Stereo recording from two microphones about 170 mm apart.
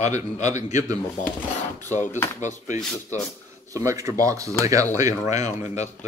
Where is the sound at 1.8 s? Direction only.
45° left (ahead or behind).